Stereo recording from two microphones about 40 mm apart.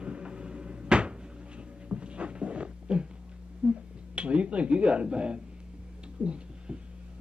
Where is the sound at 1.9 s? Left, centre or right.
Right.